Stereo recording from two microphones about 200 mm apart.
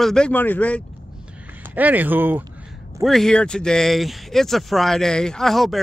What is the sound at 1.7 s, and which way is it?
Speech, 10° right (ahead or behind).